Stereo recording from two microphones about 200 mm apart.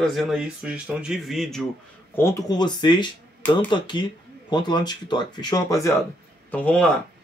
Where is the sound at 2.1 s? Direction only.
15° left (ahead or behind).